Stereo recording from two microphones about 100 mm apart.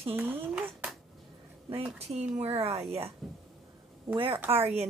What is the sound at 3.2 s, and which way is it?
Speech, centre (ahead or behind).